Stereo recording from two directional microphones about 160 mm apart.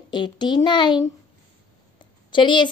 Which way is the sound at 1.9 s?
30° left (ahead or behind).